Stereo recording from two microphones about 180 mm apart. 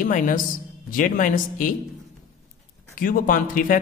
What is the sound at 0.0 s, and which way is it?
Speech, 50° left (ahead or behind).